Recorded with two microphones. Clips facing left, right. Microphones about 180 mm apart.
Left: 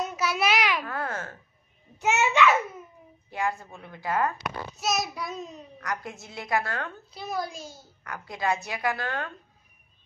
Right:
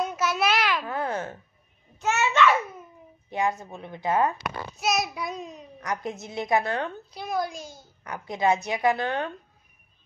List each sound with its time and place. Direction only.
0.0 s a sound: 10° left (ahead or behind)
0.8 s babbling: 20° right (ahead or behind)
2.0 s a child's voice: 15° left (ahead or behind)
3.3 s a woman's voice: 20° right (ahead or behind)
4.7 s child singing: centre (ahead or behind)
5.8 s a woman's voice: 20° right (ahead or behind)
7.2 s child singing: centre (ahead or behind)
8.0 s a woman's voice: 20° right (ahead or behind)